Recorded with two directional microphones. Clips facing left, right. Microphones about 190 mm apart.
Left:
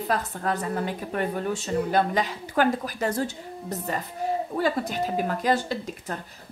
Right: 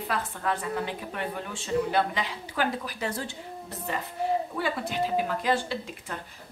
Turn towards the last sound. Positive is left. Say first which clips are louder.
# left 3 dB
turn(degrees=40)  # may be behind; listen again after turning